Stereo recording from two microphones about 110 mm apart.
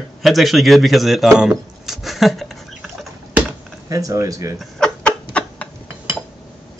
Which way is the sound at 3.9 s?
30° right (ahead or behind).